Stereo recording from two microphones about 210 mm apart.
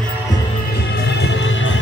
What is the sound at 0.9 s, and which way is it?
Music, 55° left (ahead or behind).